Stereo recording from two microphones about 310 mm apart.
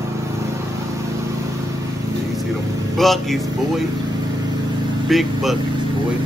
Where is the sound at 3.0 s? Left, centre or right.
Centre.